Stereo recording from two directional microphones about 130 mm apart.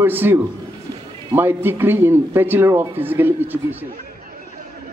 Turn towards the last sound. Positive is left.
turn(degrees=-15)  # may be behind; listen again after turning